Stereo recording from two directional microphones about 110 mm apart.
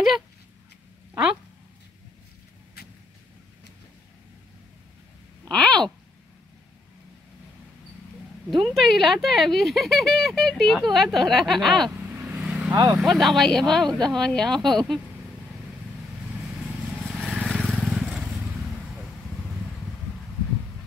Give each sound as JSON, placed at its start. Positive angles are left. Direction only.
{"t": 5.5, "sound": "a sound", "side_deg": 10}
{"t": 8.5, "sound": "speech", "side_deg": 0}
{"t": 11.9, "sound": "vehicle", "side_deg": -10}
{"t": 12.9, "sound": "speech", "side_deg": 0}
{"t": 13.8, "sound": "speech", "side_deg": -40}
{"t": 14.1, "sound": "speech", "side_deg": 5}
{"t": 17.0, "sound": "vehicle", "side_deg": 0}
{"t": 17.9, "sound": "vehicle", "side_deg": -5}